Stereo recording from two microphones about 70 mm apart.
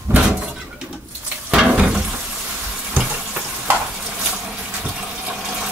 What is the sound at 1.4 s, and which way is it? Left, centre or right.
Water tap, centre.